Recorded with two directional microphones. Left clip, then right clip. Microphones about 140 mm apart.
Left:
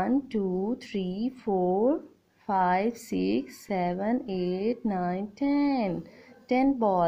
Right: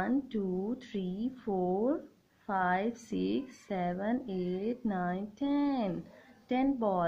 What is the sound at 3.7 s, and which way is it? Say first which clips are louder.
A woman's voice: left 5 dB; 25° left (ahead or behind).